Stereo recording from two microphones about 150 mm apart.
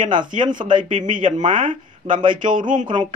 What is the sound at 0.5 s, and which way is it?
Speech, 60° right (ahead or behind).